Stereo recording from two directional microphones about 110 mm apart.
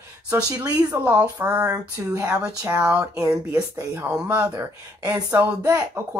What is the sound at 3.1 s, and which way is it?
Speech, 30° right (ahead or behind).